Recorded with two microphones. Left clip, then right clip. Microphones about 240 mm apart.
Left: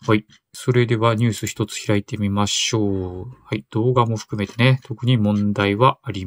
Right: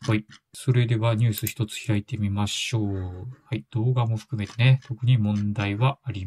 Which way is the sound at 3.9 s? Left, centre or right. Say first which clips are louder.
Left 12 dB; centre.